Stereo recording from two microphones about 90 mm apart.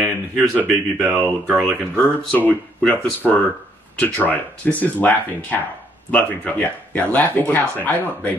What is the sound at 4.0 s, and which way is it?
Speech, 15° left (ahead or behind).